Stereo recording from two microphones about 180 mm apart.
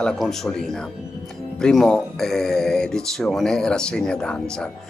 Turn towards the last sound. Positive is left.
turn(degrees=5)  # may be behind; listen again after turning